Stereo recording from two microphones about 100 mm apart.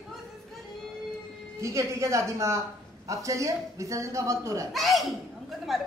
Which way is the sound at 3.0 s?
30° right (ahead or behind).